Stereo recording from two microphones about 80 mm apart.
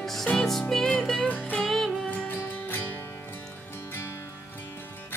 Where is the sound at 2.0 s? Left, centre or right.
Left.